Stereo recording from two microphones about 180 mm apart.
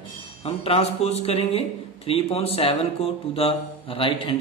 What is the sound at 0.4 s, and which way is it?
A man's voice, 35° left (ahead or behind).